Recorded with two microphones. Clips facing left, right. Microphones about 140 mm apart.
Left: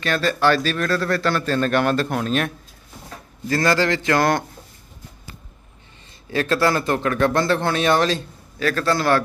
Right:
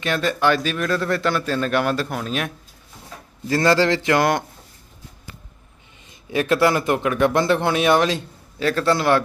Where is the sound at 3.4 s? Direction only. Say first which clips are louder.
Right 2 dB; 25° right (ahead or behind).